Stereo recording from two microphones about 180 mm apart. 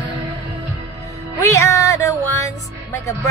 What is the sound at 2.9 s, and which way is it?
Speech, 15° left (ahead or behind).